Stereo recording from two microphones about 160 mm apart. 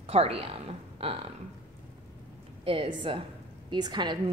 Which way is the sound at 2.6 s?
35° right (ahead or behind).